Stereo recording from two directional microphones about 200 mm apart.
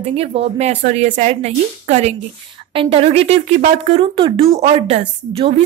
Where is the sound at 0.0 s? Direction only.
30° right (ahead or behind).